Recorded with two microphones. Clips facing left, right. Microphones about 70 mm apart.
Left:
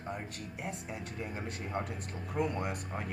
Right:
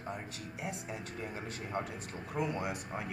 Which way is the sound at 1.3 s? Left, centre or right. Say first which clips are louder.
Left 1 dB; left.